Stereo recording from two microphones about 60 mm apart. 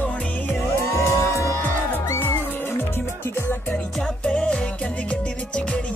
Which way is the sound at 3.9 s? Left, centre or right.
Centre.